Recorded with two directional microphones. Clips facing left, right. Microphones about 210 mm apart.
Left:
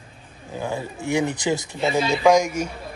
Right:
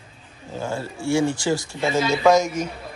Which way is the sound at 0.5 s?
15° left (ahead or behind).